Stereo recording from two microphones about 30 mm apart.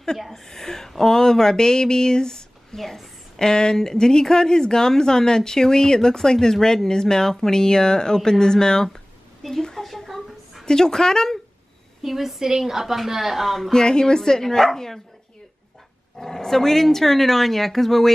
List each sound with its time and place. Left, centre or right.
0.3 s a sound: centre
3.3 s speech: left
8.8 s a sound: centre
9.8 s a sound: centre
10.6 s speech: left
12.0 s a woman's voice: centre
13.4 s speech: centre
13.8 s speech: left
14.6 s speech: centre
16.2 s speech: centre